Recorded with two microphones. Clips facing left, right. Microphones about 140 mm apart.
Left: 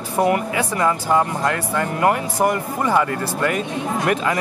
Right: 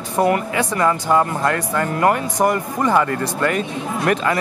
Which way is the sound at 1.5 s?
40° right (ahead or behind).